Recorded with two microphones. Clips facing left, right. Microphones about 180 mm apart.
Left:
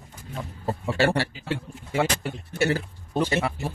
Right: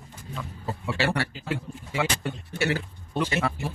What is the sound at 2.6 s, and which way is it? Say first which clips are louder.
Speech: left 3 dB; 35° left (ahead or behind).